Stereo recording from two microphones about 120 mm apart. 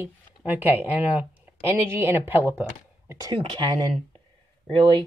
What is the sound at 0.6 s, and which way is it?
Speech, 15° right (ahead or behind).